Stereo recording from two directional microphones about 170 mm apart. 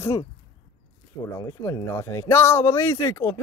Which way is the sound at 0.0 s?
15° left (ahead or behind).